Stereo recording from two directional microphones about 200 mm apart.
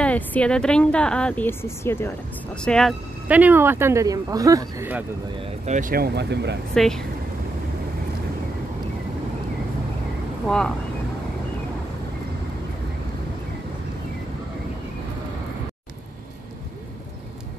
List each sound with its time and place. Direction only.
0.0 s speech: 5° left (ahead or behind)
3.3 s speech: 10° right (ahead or behind)
5.4 s speech: 40° right (ahead or behind); by 6.6 s 55° right (ahead or behind)
6.7 s speech: 5° left (ahead or behind)